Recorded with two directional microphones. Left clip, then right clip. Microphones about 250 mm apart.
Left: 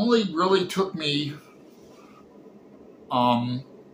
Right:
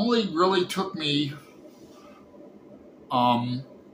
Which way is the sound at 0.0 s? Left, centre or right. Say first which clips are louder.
Left 1 dB; centre.